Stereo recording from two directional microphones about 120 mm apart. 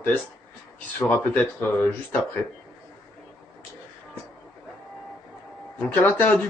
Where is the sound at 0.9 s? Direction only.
15° left (ahead or behind).